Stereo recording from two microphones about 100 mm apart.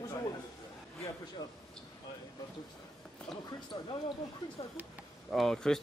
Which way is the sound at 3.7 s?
50° left (ahead or behind).